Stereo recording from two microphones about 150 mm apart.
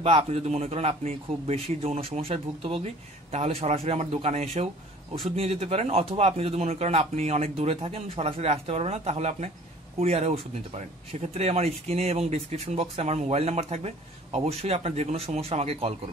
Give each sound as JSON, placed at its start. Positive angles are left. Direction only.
{"t": 0.0, "sound": "speech", "side_deg": -40}